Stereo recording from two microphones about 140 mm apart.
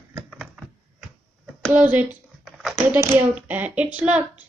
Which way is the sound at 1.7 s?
10° right (ahead or behind).